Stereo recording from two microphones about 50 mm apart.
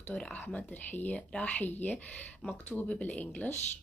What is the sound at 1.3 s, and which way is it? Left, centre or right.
Speech, left.